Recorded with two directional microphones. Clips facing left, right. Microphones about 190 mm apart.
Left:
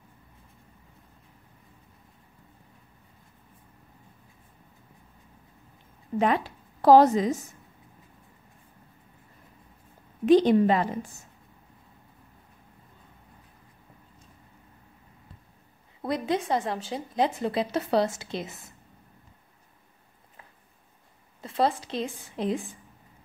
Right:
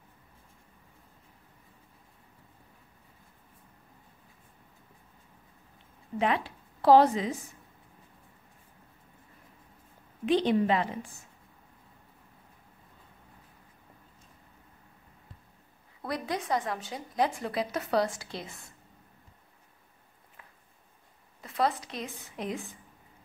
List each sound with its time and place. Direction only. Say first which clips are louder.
6.1 s a woman's voice: left 4 dB; 45° left (ahead or behind)
10.2 s a woman's voice: left 6 dB; 40° left (ahead or behind)
16.0 s a woman's voice: left 6 dB; 25° left (ahead or behind)
21.4 s a woman's voice: left 3 dB; 30° left (ahead or behind)